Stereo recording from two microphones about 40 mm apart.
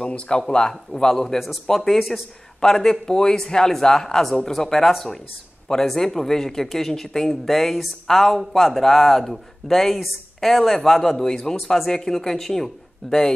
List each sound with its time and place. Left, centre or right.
0.0 s speech: left; by 2.0 s centre
2.0 s speech: centre
2.6 s speech: centre